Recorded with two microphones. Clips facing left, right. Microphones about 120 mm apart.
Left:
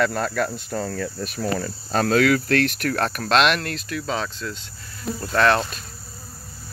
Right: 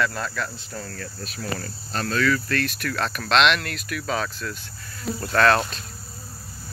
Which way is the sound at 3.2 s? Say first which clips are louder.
Even; 40° left (ahead or behind).